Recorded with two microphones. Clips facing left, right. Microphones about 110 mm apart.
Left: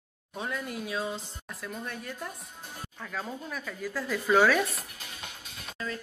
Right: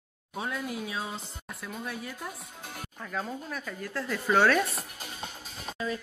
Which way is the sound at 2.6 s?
90° right.